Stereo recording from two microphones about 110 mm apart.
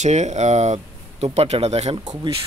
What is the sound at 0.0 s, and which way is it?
Speech, 90° right.